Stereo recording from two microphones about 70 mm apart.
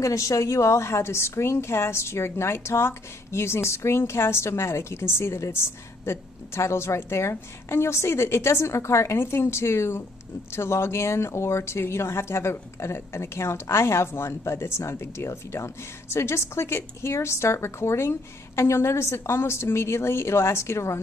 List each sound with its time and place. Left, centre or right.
0.0 s speech: left